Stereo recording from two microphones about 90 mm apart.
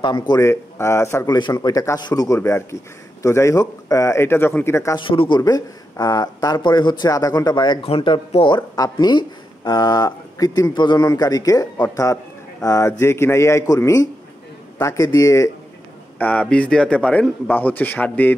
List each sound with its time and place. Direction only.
0.0 s speech: 60° left (ahead or behind)
0.4 s speech: 35° left (ahead or behind)
1.3 s speech: 50° left (ahead or behind)
2.2 s a man's voice: 35° left (ahead or behind)
4.9 s speech: 75° left (ahead or behind)
5.4 s speech: 45° left (ahead or behind)
7.8 s speech: 80° left; by 11.1 s 55° left (ahead or behind)
11.1 s speech: 45° left (ahead or behind)
16.2 s a man's voice: 15° left (ahead or behind)